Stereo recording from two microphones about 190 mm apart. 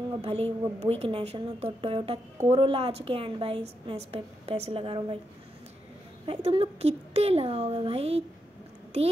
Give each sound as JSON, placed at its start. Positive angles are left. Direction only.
{"t": 0.2, "sound": "a woman's voice", "side_deg": -30}
{"t": 6.2, "sound": "speech", "side_deg": -30}